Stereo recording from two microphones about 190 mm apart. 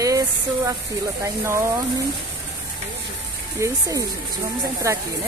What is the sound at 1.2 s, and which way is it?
Speech, 15° right (ahead or behind).